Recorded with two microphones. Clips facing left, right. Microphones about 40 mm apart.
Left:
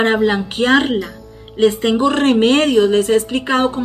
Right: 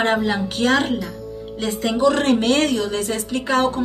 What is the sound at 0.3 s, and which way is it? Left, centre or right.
Speech, left.